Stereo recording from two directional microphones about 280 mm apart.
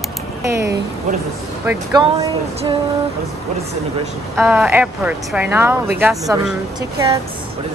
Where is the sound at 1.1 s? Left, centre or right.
Right.